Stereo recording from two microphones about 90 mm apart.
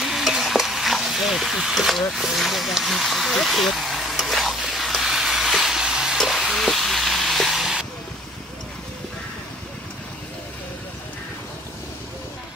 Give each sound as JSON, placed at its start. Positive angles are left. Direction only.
{"t": 0.0, "sound": "stir", "side_deg": 0}